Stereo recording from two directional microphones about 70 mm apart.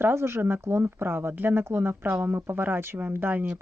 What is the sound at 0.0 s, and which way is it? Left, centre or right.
Speech, right.